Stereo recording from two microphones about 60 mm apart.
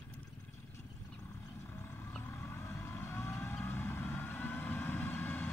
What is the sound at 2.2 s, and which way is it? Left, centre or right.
Vehicle, left.